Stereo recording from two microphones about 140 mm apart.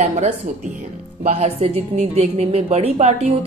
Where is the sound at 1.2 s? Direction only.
45° right (ahead or behind).